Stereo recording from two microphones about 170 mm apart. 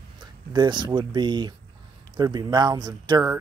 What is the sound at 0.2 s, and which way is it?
Speech, 25° right (ahead or behind).